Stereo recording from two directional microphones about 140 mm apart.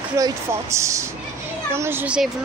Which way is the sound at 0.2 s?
20° right (ahead or behind).